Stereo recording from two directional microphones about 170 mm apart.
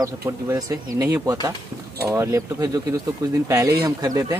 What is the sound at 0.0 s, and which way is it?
Speech, 20° right (ahead or behind).